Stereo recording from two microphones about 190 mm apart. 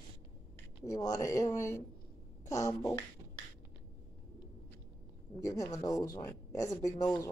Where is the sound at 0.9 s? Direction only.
20° left (ahead or behind).